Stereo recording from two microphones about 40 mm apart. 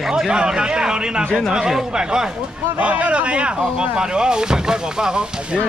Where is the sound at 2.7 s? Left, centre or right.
Right; by 5.3 s centre.